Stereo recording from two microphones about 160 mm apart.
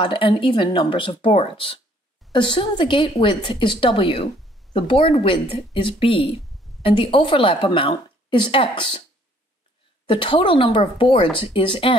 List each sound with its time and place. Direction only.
0.0 s a woman's voice: 30° left (ahead or behind)
10.0 s a woman's voice: 30° left (ahead or behind)